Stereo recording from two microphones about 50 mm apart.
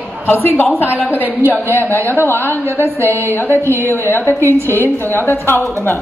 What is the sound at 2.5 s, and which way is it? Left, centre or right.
A woman's voice, right.